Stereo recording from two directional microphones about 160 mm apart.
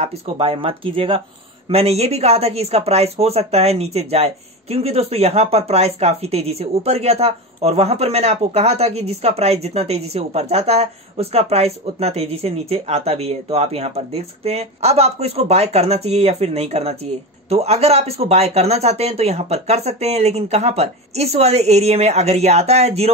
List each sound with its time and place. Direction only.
0.0 s speech: 35° right (ahead or behind)